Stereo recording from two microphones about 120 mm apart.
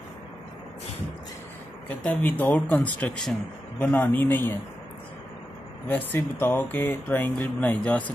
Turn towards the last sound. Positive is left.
turn(degrees=10)  # may be behind; listen again after turning